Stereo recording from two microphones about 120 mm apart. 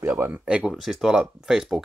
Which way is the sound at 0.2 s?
10° right (ahead or behind).